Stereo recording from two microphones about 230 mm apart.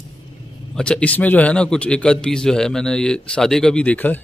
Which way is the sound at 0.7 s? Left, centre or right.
Centre.